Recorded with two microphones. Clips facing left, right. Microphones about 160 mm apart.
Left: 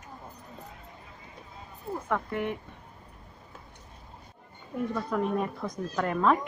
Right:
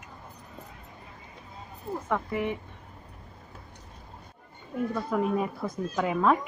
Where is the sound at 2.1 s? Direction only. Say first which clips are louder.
Right 1 dB; 5° right (ahead or behind).